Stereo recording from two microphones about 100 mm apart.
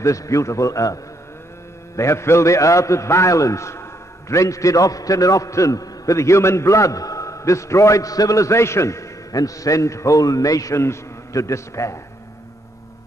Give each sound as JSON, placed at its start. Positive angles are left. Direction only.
{"t": 0.0, "sound": "a man's voice", "side_deg": 30}
{"t": 2.0, "sound": "a man's voice", "side_deg": 30}